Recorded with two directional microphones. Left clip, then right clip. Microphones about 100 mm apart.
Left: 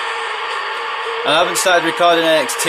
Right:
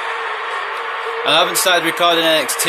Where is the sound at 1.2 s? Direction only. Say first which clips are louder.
Even; 40° left (ahead or behind).